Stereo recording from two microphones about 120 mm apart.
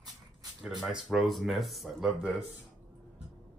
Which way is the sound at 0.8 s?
5° right (ahead or behind).